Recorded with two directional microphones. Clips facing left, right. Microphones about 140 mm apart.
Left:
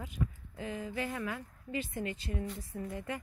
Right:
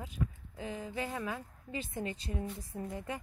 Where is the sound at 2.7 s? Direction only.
20° right (ahead or behind).